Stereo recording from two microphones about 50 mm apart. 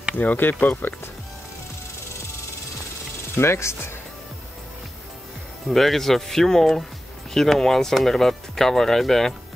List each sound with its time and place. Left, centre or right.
0.2 s speech: left
3.3 s speech: left
5.7 s speech: centre